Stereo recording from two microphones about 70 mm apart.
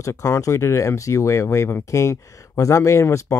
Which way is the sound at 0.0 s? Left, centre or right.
Left.